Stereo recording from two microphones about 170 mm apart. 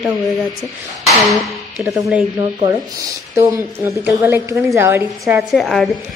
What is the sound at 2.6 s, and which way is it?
A woman's voice, 20° right (ahead or behind).